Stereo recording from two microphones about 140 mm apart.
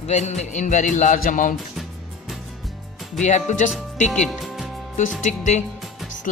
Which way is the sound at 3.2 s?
55° left (ahead or behind).